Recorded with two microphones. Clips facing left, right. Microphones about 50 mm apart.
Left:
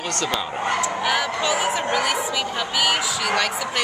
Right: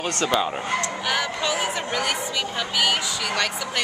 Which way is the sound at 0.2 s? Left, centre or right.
Centre.